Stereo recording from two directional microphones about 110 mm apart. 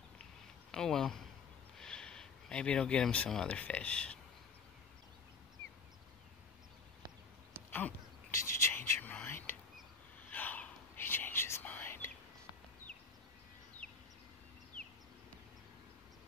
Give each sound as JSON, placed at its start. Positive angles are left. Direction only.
{"t": 0.7, "sound": "speech", "side_deg": 5}
{"t": 7.7, "sound": "a sound", "side_deg": 20}
{"t": 9.0, "sound": "whispering", "side_deg": 15}